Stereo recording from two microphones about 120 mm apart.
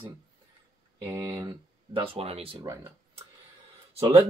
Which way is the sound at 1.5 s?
50° right (ahead or behind).